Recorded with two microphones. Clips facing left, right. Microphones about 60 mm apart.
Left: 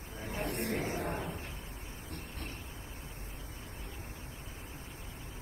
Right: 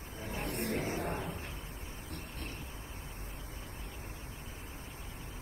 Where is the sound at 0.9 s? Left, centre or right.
Left.